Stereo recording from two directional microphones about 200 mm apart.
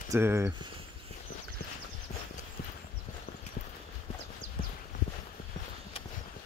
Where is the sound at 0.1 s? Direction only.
10° right (ahead or behind).